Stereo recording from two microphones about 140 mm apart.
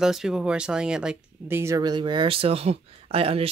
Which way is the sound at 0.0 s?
5° right (ahead or behind).